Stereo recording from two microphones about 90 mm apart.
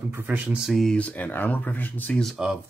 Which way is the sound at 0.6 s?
Centre (ahead or behind).